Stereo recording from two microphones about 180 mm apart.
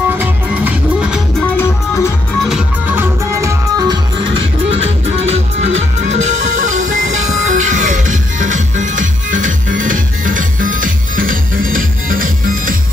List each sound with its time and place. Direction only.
0.1 s music: 10° right (ahead or behind)
1.4 s music: 15° left (ahead or behind)
2.4 s music: 5° right (ahead or behind); by 12.7 s 50° right (ahead or behind)